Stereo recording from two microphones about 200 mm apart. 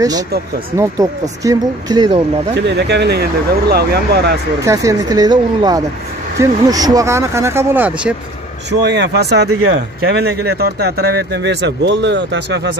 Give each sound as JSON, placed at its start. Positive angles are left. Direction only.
{"t": 0.7, "sound": "speech", "side_deg": -15}
{"t": 2.5, "sound": "speech", "side_deg": -60}
{"t": 4.6, "sound": "speech", "side_deg": -15}
{"t": 8.8, "sound": "speech", "side_deg": -60}